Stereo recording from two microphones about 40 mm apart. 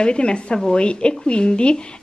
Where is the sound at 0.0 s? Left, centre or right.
Left.